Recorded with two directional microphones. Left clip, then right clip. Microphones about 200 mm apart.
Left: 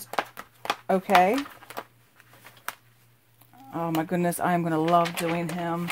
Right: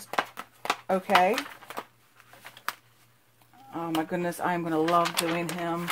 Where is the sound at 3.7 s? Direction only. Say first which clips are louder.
Left 2 dB; 45° left (ahead or behind).